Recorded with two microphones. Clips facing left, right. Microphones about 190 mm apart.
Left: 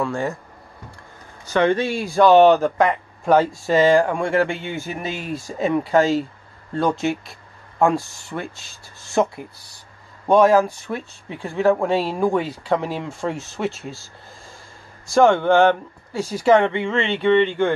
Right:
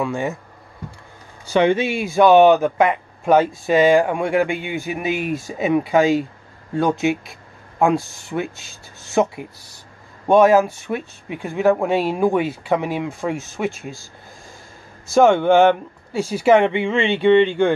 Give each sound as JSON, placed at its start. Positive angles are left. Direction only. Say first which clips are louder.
{"t": 0.0, "sound": "speech", "louder": "right 1 dB", "side_deg": -15}
{"t": 1.5, "sound": "speech", "louder": "right 2 dB", "side_deg": -10}
{"t": 15.2, "sound": "speech", "louder": "right 2 dB", "side_deg": -10}